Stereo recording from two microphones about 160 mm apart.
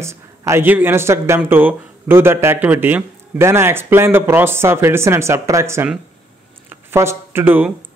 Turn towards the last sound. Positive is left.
turn(degrees=-10)  # may be behind; listen again after turning